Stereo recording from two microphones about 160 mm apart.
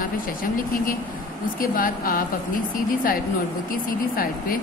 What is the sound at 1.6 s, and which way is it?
Speech, 60° left (ahead or behind).